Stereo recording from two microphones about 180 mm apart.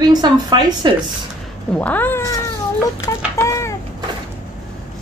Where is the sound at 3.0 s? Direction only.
20° left (ahead or behind).